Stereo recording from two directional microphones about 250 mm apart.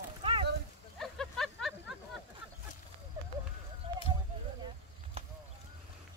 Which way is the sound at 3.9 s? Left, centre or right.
Centre.